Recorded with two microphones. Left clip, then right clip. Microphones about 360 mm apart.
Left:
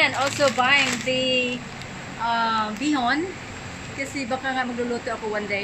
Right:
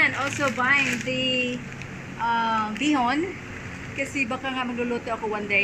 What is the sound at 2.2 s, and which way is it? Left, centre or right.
Speech, centre.